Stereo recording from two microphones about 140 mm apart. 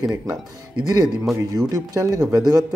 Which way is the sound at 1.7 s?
25° right (ahead or behind).